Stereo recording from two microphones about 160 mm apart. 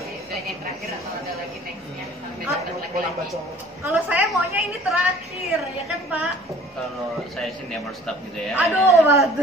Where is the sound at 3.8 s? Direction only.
10° right (ahead or behind).